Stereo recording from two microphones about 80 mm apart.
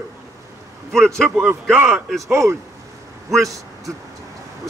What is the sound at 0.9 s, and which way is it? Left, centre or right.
Speech, centre.